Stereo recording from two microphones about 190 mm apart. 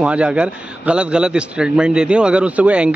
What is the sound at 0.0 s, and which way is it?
A man's voice, 5° right (ahead or behind).